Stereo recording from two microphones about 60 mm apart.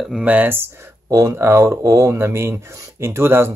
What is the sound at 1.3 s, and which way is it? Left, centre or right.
Speech, right.